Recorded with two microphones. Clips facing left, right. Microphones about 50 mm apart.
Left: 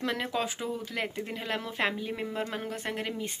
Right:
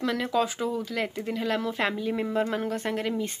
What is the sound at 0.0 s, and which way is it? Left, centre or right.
Speech, left.